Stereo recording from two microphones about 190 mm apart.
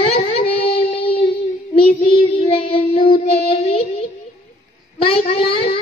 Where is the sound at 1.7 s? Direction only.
30° left (ahead or behind).